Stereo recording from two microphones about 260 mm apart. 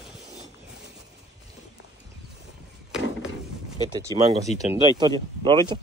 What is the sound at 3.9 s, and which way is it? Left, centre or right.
Speech, centre.